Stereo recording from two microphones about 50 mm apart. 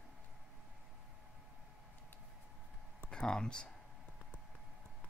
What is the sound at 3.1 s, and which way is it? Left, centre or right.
Speech, centre.